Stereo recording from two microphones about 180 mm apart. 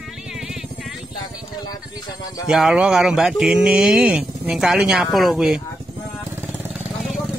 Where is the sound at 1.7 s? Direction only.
20° left (ahead or behind).